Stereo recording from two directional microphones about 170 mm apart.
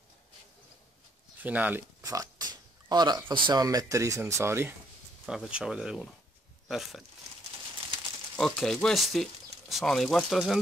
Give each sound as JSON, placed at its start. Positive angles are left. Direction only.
{"t": 1.4, "sound": "oink", "side_deg": -10}
{"t": 3.4, "sound": "speech", "side_deg": -20}
{"t": 5.2, "sound": "speech", "side_deg": -5}
{"t": 8.4, "sound": "speech", "side_deg": 0}